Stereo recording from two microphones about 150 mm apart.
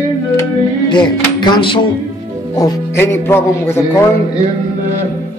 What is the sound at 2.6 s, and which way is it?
Speech, 15° left (ahead or behind).